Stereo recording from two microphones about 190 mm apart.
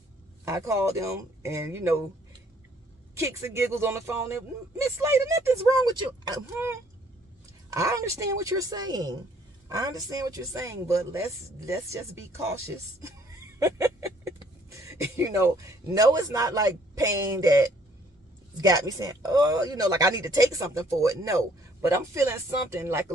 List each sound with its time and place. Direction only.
0.5 s speech: 15° right (ahead or behind)
3.2 s speech: 15° right (ahead or behind)